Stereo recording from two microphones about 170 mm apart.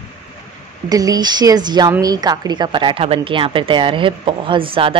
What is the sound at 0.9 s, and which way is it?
A woman's voice, 20° right (ahead or behind).